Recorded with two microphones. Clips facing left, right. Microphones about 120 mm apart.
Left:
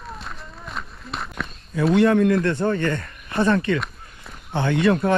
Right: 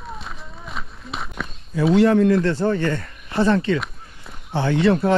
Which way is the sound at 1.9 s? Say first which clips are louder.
Right 2 dB; 30° right (ahead or behind).